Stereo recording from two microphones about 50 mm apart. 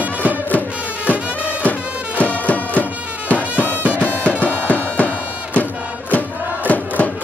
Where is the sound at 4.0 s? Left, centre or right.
Left.